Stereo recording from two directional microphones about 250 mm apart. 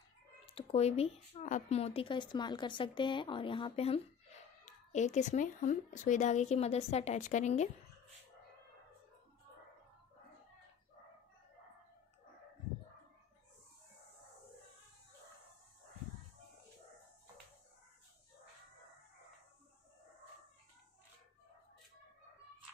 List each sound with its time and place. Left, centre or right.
0.5 s speech: left